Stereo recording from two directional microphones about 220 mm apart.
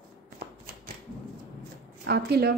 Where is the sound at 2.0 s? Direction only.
45° right (ahead or behind).